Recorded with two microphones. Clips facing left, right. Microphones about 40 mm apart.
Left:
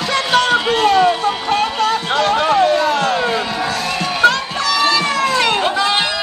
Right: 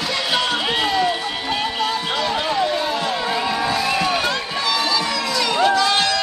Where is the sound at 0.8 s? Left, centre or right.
Left.